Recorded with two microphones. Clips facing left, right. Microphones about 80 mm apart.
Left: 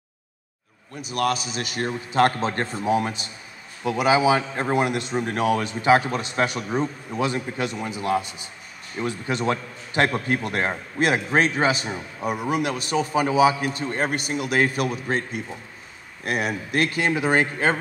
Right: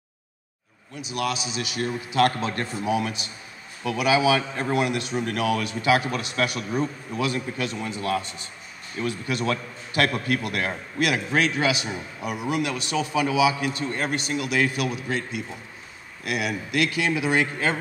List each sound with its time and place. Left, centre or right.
1.0 s a man's voice: left; by 8.5 s centre
8.9 s a man's voice: left